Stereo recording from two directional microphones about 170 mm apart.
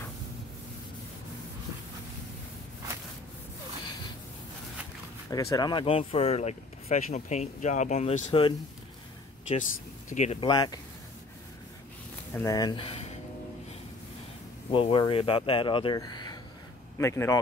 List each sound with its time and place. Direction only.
5.3 s speech: 20° left (ahead or behind)
9.5 s speech: 45° left (ahead or behind)
10.4 s speech: 25° left (ahead or behind)
12.4 s speech: 20° left (ahead or behind)
14.7 s speech: 30° left (ahead or behind)